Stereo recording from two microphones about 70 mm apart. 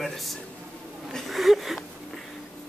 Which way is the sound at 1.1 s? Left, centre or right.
Centre.